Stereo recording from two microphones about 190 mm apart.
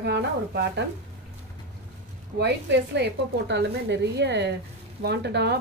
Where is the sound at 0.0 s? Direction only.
65° right (ahead or behind).